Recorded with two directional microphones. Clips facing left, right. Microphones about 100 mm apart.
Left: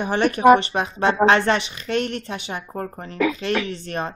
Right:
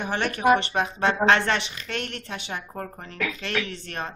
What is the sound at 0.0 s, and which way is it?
Speech, 15° left (ahead or behind).